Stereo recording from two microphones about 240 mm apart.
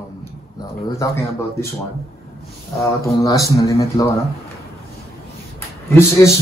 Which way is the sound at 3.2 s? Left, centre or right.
Centre.